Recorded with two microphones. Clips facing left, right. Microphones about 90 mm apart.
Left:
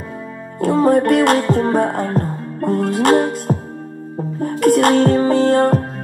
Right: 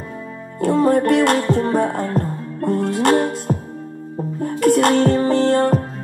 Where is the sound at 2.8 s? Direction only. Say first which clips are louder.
Left 2 dB; 55° left (ahead or behind).